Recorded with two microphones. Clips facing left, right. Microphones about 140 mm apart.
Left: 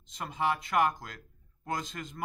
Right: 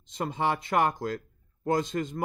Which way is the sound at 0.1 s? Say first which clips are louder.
Right 3 dB; 30° right (ahead or behind).